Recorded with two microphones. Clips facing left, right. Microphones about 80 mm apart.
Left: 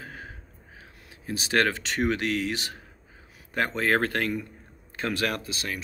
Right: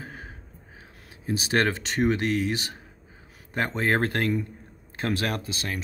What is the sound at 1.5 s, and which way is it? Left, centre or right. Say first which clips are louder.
Speech: left 1 dB; right.